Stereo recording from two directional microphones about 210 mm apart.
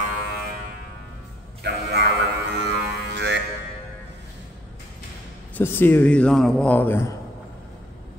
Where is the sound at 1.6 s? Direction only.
55° right (ahead or behind).